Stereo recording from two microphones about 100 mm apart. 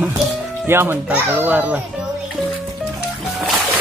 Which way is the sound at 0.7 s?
25° right (ahead or behind).